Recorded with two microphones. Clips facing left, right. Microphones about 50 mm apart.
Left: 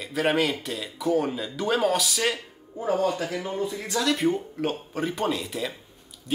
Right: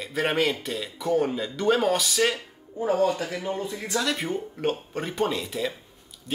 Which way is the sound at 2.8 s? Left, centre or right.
Right.